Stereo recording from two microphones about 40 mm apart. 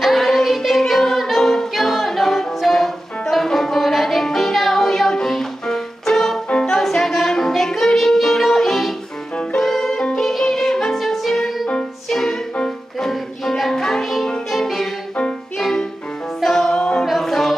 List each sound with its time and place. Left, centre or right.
0.0 s music: centre
13.1 s music: centre
16.7 s a capella: left
17.0 s music: centre